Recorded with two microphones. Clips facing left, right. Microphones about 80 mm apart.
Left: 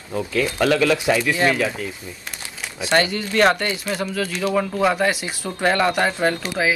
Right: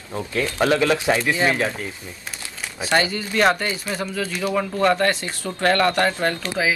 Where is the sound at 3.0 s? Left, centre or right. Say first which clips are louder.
Left 2 dB; centre.